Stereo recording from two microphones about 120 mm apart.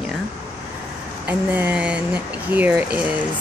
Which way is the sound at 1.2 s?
15° right (ahead or behind).